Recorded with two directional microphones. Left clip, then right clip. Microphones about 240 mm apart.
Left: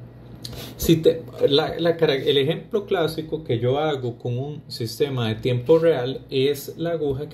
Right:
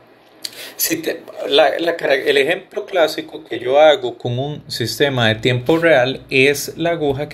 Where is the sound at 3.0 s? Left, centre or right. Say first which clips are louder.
Right 7 dB; centre.